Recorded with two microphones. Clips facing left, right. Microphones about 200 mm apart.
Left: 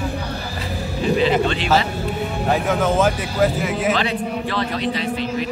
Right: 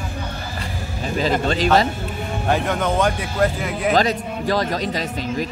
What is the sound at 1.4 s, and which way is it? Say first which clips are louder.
Speech: right 2 dB; 40° right (ahead or behind).